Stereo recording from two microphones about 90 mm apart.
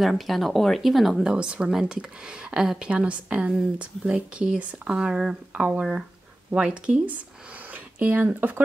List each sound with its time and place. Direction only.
0.0 s speech: centre (ahead or behind); by 8.5 s 20° right (ahead or behind)